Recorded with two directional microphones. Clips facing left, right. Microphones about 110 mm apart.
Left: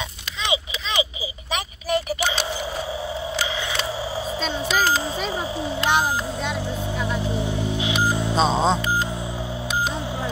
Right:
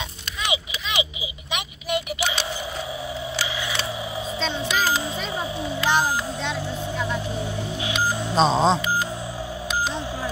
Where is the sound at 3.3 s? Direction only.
25° left (ahead or behind).